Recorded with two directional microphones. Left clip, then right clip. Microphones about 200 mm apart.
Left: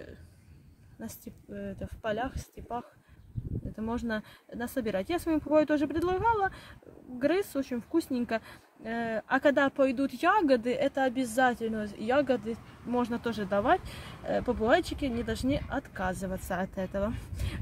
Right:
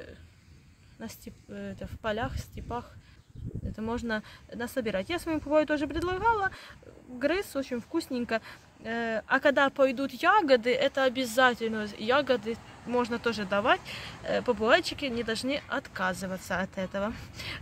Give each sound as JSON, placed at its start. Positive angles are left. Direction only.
{"t": 0.9, "sound": "speech", "side_deg": 30}